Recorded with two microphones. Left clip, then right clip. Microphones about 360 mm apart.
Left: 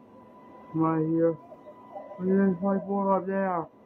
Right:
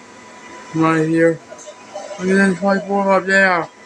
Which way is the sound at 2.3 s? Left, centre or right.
Left.